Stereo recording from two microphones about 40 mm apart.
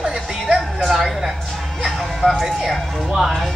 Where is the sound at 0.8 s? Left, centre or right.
Centre.